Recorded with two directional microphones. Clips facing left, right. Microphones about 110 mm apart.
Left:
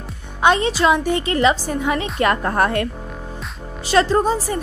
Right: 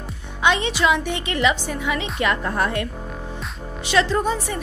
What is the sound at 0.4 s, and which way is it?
A woman's voice, 40° left (ahead or behind).